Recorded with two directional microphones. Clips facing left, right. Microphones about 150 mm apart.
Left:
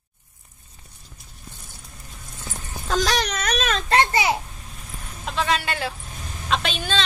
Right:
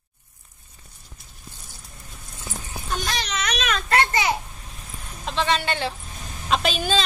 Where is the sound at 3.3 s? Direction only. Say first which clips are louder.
Left 2 dB; 40° left (ahead or behind).